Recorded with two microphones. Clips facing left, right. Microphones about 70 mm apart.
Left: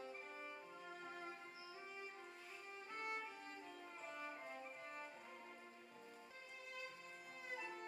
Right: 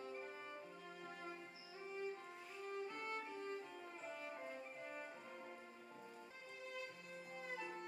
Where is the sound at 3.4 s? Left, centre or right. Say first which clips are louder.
Right 6 dB; centre.